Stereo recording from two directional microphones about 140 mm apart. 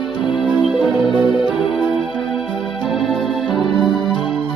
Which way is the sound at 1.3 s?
40° left (ahead or behind).